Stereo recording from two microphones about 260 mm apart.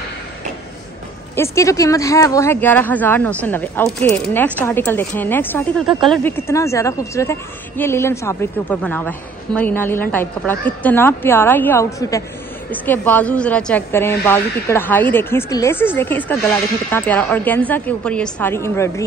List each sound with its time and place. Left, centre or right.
1.3 s speech: centre